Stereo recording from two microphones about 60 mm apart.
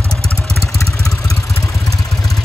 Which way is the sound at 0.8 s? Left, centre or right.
Left.